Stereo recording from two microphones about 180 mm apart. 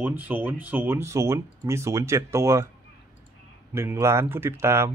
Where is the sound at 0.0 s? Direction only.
10° right (ahead or behind).